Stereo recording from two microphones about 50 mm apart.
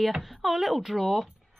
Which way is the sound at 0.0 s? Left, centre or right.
Centre.